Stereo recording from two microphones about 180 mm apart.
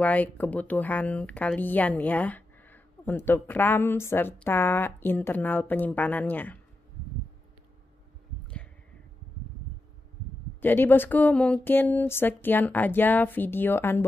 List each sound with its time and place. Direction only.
0.0 s speech: 10° left (ahead or behind)
10.6 s speech: 10° left (ahead or behind)